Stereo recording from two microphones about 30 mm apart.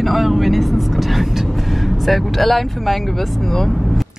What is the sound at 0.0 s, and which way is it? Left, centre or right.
Speech, centre.